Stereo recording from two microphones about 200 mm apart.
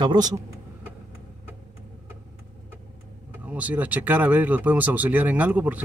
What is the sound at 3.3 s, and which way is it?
Speech, 10° right (ahead or behind).